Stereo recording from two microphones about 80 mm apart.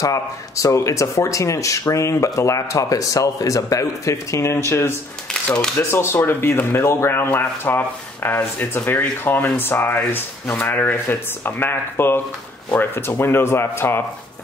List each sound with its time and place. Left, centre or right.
0.0 s speech: left
5.3 s speech: centre
5.8 s speech: left